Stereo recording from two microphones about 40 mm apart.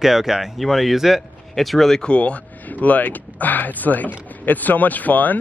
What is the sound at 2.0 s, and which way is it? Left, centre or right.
Speech, left.